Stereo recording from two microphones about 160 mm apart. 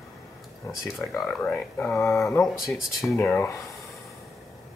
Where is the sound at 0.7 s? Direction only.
Centre (ahead or behind); by 2.4 s 15° left (ahead or behind).